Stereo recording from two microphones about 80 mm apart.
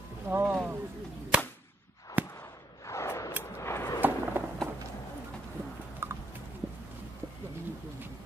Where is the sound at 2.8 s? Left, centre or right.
Left.